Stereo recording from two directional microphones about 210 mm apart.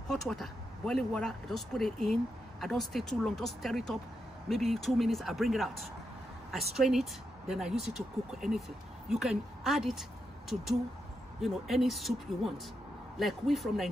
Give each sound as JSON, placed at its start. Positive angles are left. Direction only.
{"t": 0.1, "sound": "speech", "side_deg": 0}
{"t": 11.4, "sound": "speech", "side_deg": 0}